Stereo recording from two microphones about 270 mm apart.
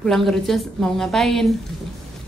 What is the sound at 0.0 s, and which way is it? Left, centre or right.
A woman's voice, centre.